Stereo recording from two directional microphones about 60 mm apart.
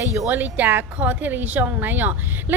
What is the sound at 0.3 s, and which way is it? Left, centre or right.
Speech, right.